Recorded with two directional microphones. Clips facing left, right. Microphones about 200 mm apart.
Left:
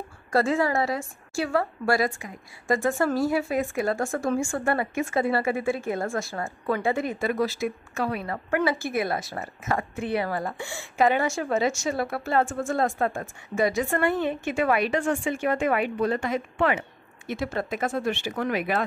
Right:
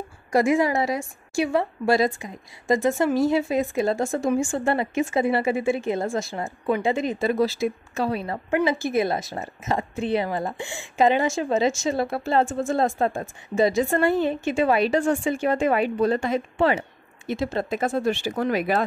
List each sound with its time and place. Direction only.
0.3 s a woman's voice: 15° right (ahead or behind); by 18.8 s 35° right (ahead or behind)